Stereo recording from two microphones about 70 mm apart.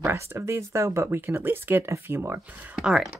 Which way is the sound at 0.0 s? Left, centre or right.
Right.